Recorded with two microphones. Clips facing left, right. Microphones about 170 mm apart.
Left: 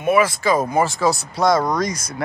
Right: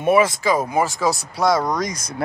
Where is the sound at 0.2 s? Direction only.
10° right (ahead or behind).